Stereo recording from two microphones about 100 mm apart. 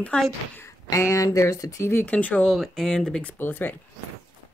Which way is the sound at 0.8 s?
35° left (ahead or behind).